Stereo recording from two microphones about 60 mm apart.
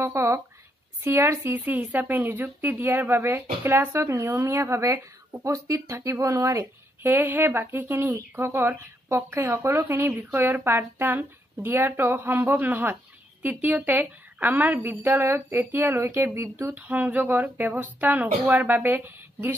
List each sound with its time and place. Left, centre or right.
0.0 s speech: right
7.0 s a woman's voice: right
16.7 s speech: right